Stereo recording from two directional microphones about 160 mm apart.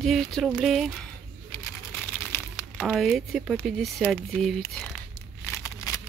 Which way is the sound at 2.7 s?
Centre (ahead or behind).